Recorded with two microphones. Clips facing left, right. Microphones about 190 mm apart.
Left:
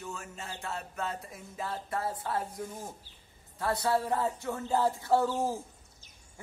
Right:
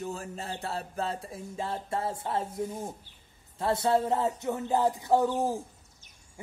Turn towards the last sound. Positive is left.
turn(degrees=-15)  # may be behind; listen again after turning